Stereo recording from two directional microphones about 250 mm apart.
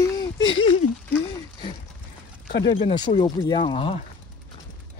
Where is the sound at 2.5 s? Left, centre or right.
Left.